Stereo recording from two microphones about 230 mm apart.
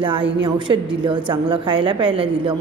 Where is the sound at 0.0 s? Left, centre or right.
Right.